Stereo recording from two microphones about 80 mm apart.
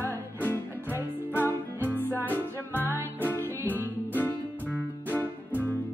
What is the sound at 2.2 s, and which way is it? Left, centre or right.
Music, left.